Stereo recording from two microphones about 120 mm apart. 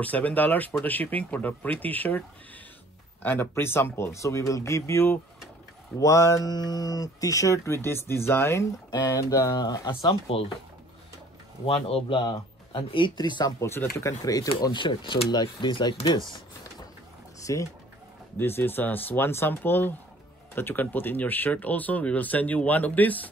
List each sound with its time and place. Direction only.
0.0 s speech: 10° left (ahead or behind)
8.9 s speech: 35° left (ahead or behind)
11.6 s speech: 50° left (ahead or behind); by 13.7 s 35° left (ahead or behind)
13.7 s speech: 20° left (ahead or behind)
14.6 s speech: 40° left (ahead or behind)
17.5 s speech: 25° left (ahead or behind)